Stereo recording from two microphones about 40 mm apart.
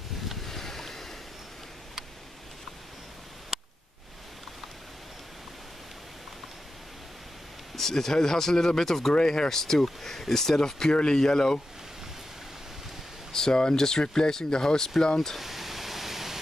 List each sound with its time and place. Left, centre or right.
0.3 s boat: centre
7.7 s speech: centre
13.3 s speech: centre
15.3 s pink noise: centre